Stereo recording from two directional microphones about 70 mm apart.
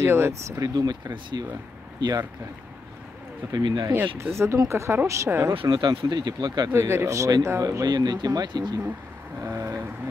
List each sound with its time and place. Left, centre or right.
0.0 s speech: right
0.6 s speech: right
3.5 s speech: right
3.9 s speech: right
5.7 s speech: right
6.7 s speech: right
7.8 s speech: right
9.4 s speech: right